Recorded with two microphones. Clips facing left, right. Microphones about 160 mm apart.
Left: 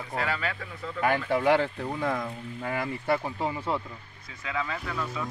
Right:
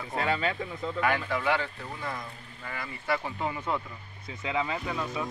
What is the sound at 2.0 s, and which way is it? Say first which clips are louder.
Speech: left 8 dB; 60° left (ahead or behind).